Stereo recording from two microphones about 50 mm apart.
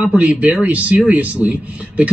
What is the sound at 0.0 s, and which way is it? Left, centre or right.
Speech, right.